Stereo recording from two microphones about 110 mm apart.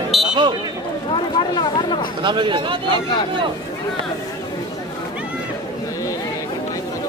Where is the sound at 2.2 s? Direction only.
45° right (ahead or behind).